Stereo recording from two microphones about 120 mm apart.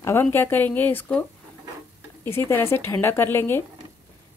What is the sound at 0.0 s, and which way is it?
A woman's voice, 20° left (ahead or behind).